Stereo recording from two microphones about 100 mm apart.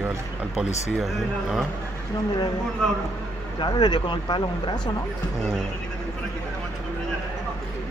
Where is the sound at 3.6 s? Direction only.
45° left (ahead or behind).